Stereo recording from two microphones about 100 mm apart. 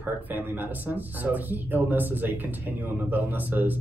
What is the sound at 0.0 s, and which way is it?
Speech, 20° right (ahead or behind).